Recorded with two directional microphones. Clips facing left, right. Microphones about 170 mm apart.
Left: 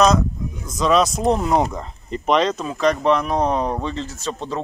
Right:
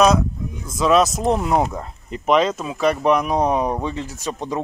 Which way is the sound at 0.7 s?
5° right (ahead or behind).